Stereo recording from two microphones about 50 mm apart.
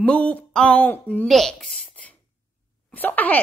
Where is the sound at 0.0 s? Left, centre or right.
Left.